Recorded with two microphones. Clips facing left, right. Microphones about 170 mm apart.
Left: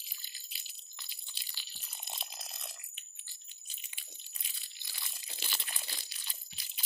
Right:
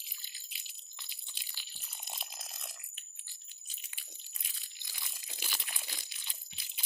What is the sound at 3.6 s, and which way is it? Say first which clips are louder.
Crunch: even; 5° right (ahead or behind).